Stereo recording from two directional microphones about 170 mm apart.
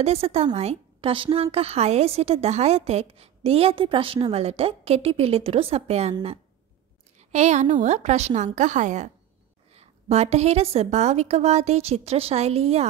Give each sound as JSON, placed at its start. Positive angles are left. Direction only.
{"t": 0.0, "sound": "a woman's voice", "side_deg": -35}
{"t": 7.3, "sound": "a woman's voice", "side_deg": -45}